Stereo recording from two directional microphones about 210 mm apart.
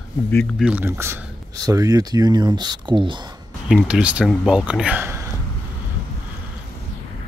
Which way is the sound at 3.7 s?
5° right (ahead or behind).